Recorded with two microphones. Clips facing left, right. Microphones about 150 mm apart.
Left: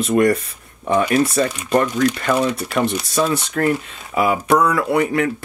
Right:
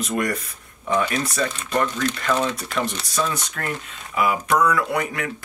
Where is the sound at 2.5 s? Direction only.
30° left (ahead or behind).